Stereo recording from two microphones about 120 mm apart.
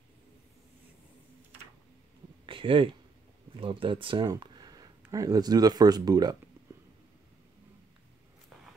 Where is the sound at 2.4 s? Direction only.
45° right (ahead or behind).